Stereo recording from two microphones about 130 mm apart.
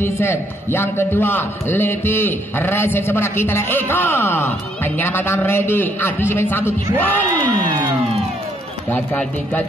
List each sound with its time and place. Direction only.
0.0 s a man's voice: 15° left (ahead or behind)
8.9 s a man's voice: 15° left (ahead or behind)